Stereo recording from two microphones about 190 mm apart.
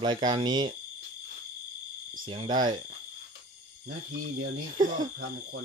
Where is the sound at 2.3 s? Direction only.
25° right (ahead or behind).